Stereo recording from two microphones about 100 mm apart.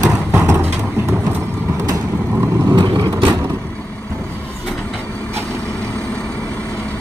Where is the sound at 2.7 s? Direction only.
45° right (ahead or behind).